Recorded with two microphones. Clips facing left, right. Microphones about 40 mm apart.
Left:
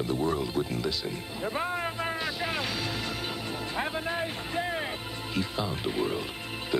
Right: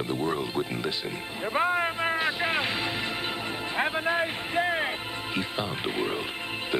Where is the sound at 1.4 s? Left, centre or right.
Right.